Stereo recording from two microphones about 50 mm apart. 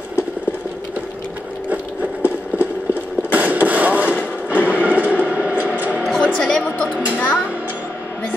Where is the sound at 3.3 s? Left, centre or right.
Right.